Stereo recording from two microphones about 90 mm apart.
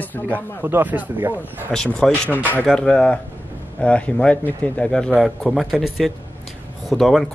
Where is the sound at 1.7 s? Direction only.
5° left (ahead or behind).